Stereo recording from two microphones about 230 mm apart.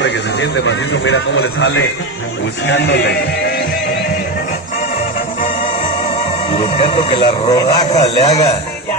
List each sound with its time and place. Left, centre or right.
0.0 s a man's voice: left
2.6 s a man's voice: left
6.5 s speech: left
7.0 s speech: left
8.0 s speech: left